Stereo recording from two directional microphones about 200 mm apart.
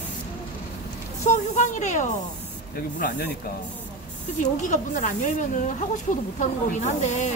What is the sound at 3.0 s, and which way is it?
Speech, 50° left (ahead or behind).